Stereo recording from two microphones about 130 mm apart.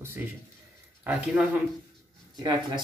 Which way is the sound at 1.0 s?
15° right (ahead or behind).